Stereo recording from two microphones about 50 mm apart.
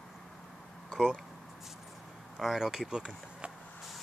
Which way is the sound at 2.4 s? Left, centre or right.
Centre.